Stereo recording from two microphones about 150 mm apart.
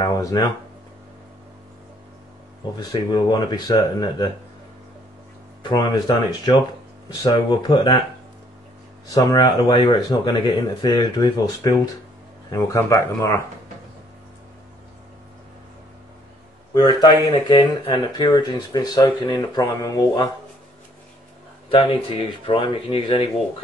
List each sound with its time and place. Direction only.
0.0 s a sound: 25° left (ahead or behind)
2.8 s speech: 25° left (ahead or behind)
5.6 s speech: 30° left (ahead or behind)
9.1 s speech: 25° left (ahead or behind)
16.7 s speech: 25° left (ahead or behind)
21.6 s speech: 35° left (ahead or behind)